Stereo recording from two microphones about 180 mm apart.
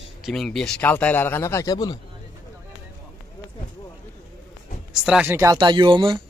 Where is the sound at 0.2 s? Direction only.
Centre (ahead or behind); by 2.0 s 20° left (ahead or behind).